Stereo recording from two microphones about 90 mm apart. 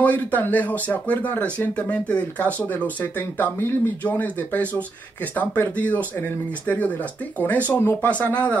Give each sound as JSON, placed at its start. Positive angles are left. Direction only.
{"t": 0.0, "sound": "speech", "side_deg": 20}
{"t": 7.3, "sound": "speech", "side_deg": 20}